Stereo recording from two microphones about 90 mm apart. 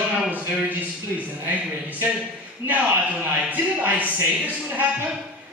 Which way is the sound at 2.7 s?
15° right (ahead or behind).